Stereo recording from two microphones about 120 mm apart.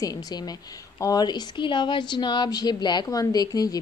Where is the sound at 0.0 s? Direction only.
35° left (ahead or behind).